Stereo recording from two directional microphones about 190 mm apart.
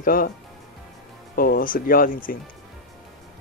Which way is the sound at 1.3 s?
50° left (ahead or behind).